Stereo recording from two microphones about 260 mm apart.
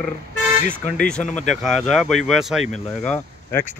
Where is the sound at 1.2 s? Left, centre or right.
Left.